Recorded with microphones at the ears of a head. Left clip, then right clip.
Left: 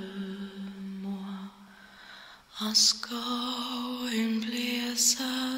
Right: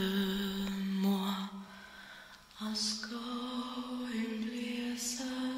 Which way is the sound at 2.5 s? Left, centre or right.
Left.